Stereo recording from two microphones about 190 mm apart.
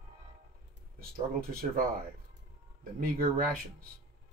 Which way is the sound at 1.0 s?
50° right (ahead or behind).